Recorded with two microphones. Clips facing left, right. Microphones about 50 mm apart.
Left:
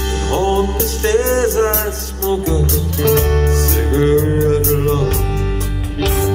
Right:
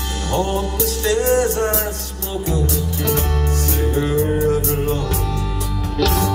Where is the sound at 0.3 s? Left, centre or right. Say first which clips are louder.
Left 5 dB; left.